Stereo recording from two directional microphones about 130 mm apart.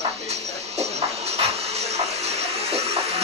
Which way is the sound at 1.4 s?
55° right (ahead or behind).